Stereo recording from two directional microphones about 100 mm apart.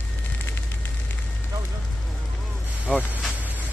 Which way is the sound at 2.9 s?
15° left (ahead or behind).